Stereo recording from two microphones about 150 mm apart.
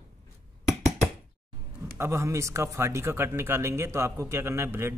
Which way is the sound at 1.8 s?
20° right (ahead or behind).